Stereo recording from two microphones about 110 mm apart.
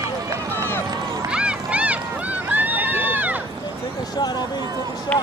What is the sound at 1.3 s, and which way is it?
Run, 10° right (ahead or behind).